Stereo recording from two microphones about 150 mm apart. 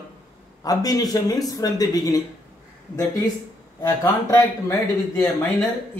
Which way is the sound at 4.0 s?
20° left (ahead or behind).